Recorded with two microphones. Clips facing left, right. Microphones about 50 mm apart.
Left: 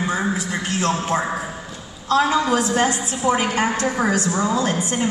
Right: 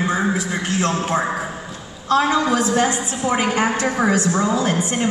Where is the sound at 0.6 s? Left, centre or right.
Right.